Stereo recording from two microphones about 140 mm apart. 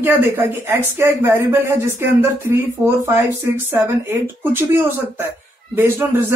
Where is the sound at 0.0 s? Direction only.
15° right (ahead or behind).